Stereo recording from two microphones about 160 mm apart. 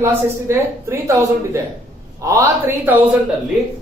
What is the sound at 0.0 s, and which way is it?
A woman's voice, 15° right (ahead or behind).